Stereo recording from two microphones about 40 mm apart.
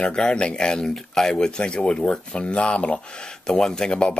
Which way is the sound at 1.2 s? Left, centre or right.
Centre.